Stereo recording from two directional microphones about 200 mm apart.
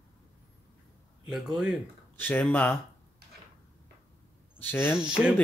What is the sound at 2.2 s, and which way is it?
Speech, 10° left (ahead or behind).